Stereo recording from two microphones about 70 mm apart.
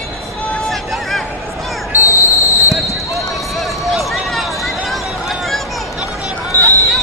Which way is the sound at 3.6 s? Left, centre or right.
Centre.